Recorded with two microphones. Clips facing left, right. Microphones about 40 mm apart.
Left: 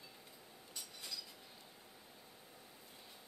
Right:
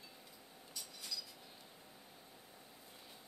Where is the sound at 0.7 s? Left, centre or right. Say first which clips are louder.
Right 1 dB; left.